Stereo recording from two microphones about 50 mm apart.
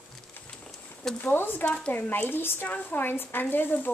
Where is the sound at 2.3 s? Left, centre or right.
Left.